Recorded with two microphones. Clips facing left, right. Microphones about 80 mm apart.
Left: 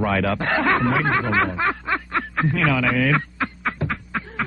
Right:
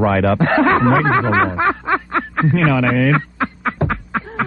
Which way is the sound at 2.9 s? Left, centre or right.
Right.